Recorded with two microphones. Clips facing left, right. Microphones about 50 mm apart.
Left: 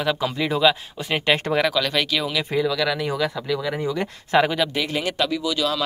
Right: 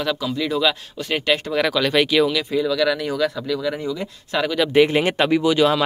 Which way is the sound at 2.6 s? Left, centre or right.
Centre.